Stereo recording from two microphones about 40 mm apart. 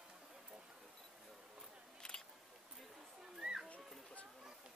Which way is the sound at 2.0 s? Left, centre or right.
Centre.